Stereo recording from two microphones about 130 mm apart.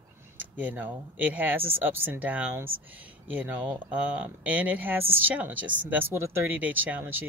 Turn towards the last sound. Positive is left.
turn(degrees=-15)  # may be behind; listen again after turning